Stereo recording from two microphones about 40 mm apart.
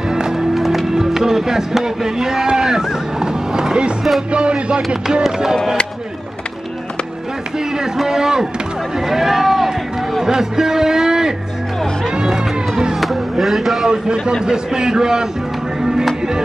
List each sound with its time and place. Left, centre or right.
0.1 s music: centre
4.3 s speech: right
5.2 s a man's voice: centre
7.5 s a man's voice: centre
14.4 s a man's voice: centre
15.8 s music: centre